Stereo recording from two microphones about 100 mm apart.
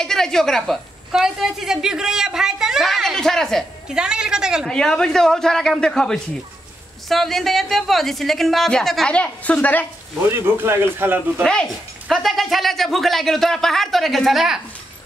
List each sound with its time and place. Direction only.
0.0 s a woman's voice: 5° left (ahead or behind)
3.9 s a man's voice: 10° right (ahead or behind)
4.6 s speech: 5° left (ahead or behind)
10.3 s a man's voice: 25° right (ahead or behind)
11.4 s speech: 5° left (ahead or behind)